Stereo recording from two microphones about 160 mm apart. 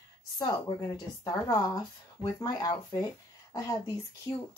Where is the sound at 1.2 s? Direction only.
20° left (ahead or behind).